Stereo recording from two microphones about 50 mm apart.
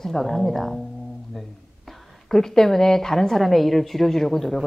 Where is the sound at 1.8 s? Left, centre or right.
Centre.